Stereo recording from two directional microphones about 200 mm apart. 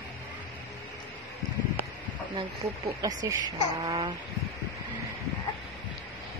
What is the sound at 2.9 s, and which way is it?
Speech, 15° right (ahead or behind).